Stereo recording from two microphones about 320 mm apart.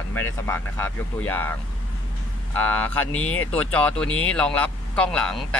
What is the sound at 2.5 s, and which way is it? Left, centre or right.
Speech, centre.